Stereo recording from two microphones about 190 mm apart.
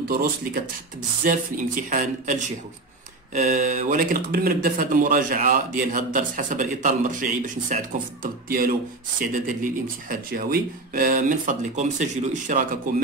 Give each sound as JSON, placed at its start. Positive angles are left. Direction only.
{"t": 0.1, "sound": "speech", "side_deg": -50}